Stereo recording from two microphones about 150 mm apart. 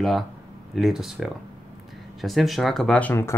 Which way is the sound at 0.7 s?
Centre (ahead or behind).